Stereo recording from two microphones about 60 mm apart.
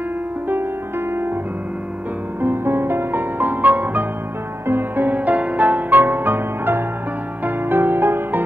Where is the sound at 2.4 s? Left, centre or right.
Right.